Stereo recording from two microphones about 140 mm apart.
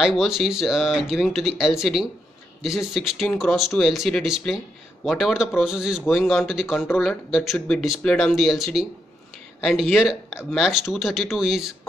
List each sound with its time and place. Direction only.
0.0 s speech: centre (ahead or behind)